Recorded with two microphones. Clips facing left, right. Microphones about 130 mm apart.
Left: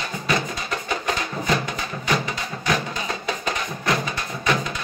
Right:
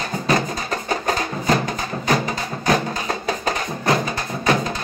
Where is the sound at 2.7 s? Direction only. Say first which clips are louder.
Right 5 dB; 40° right (ahead or behind).